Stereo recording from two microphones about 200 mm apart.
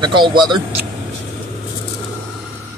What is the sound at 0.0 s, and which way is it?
Speech, 25° right (ahead or behind).